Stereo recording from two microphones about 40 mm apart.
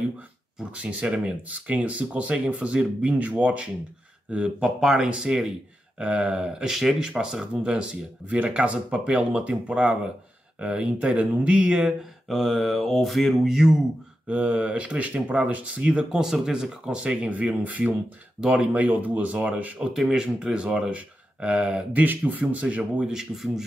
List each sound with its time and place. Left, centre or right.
0.7 s speech: right
1.5 s speech: right
4.6 s speech: centre
5.0 s speech: right
6.7 s speech: centre; by 10.9 s right
11.1 s speech: right
12.3 s mantra: centre
14.2 s speech: right
17.3 s speech: right
19.9 s speech: centre
20.2 s speech: right
21.9 s speech: right
23.0 s speech: centre